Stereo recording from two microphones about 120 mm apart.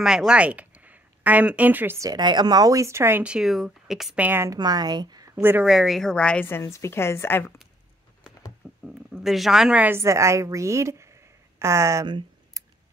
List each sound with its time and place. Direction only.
0.0 s speech: 5° right (ahead or behind)
2.0 s speech: 35° right (ahead or behind); by 4.2 s 5° right (ahead or behind)
4.2 s a woman's voice: 15° right (ahead or behind)
4.5 s speech: 35° right (ahead or behind)
5.3 s speech: 15° right (ahead or behind)
5.7 s speech: centre (ahead or behind)
6.4 s a woman's voice: 20° left (ahead or behind)
8.8 s speech: 5° right (ahead or behind); by 12.1 s 25° right (ahead or behind)
12.6 s scissors: 30° right (ahead or behind)